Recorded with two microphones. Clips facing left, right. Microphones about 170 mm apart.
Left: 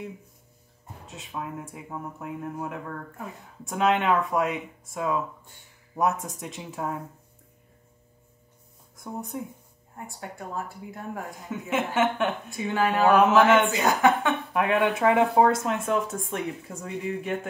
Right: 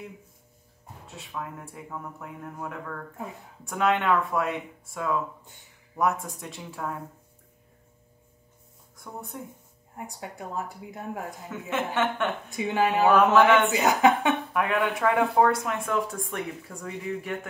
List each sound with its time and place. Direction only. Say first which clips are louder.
1.0 s speech: left 1 dB; 20° left (ahead or behind)
8.9 s speech: left 5 dB; 20° left (ahead or behind)
9.9 s a woman's voice: even; 20° right (ahead or behind)
11.7 s speech: left 2 dB; 15° left (ahead or behind)
12.4 s a woman's voice: right 1 dB; 20° right (ahead or behind)
13.1 s speech: left 1 dB; 20° left (ahead or behind)
13.7 s a woman's voice: right 1 dB; 20° right (ahead or behind)
14.5 s speech: left 2 dB; 25° left (ahead or behind)